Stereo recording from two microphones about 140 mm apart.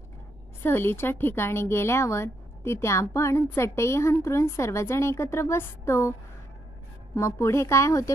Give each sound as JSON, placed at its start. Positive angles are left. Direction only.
{"t": 0.6, "sound": "a woman's voice", "side_deg": 15}
{"t": 7.2, "sound": "a woman's voice", "side_deg": 20}